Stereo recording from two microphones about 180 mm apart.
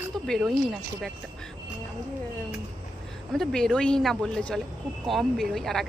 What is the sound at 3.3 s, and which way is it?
Speech, centre (ahead or behind).